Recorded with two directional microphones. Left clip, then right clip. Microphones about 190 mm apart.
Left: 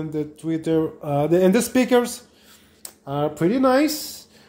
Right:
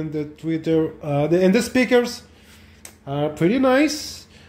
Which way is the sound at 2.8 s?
5° left (ahead or behind).